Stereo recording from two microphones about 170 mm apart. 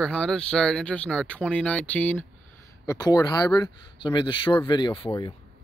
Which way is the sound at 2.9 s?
20° left (ahead or behind).